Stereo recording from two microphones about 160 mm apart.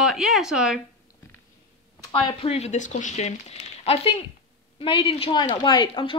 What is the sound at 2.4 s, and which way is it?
A woman's voice, 40° left (ahead or behind).